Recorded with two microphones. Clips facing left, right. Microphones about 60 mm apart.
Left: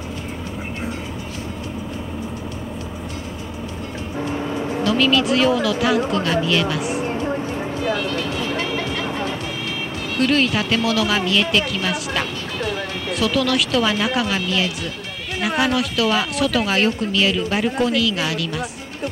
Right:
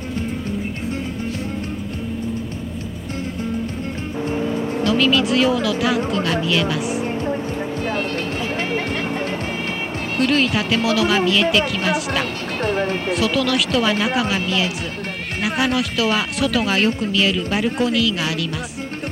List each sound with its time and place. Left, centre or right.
4.8 s speech: centre
10.2 s speech: centre
12.5 s speech: right
13.1 s speech: centre